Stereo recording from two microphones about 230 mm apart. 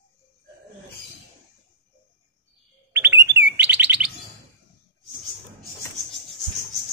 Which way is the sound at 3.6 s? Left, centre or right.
Right.